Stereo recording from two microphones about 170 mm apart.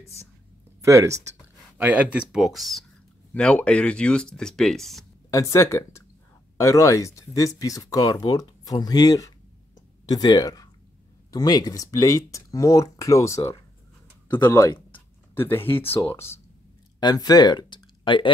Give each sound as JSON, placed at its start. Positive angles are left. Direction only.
{"t": 0.8, "sound": "speech", "side_deg": -20}
{"t": 5.3, "sound": "speech", "side_deg": 20}
{"t": 9.8, "sound": "a sound", "side_deg": 25}
{"t": 11.3, "sound": "speech", "side_deg": 20}